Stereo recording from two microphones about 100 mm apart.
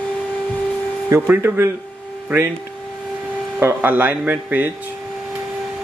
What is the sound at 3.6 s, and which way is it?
Speech, 20° right (ahead or behind).